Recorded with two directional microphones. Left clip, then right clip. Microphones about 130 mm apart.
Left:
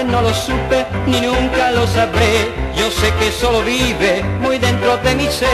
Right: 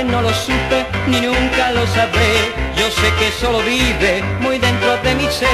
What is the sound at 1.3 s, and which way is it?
Music, 15° right (ahead or behind).